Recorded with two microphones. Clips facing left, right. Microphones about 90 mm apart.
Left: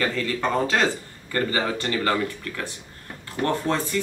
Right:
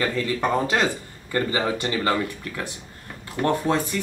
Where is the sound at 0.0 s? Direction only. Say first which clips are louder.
Right 1 dB; 15° right (ahead or behind).